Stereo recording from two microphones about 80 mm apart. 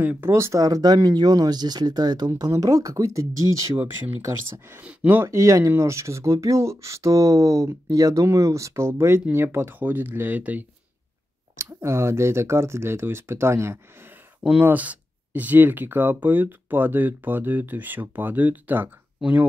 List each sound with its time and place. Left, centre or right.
0.2 s speech: right
2.5 s speech: right
4.2 s speech: right
5.3 s speech: right
11.5 s speech: right
14.4 s speech: centre